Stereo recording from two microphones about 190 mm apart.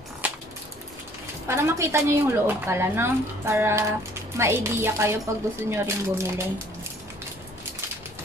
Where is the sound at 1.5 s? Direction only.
15° right (ahead or behind).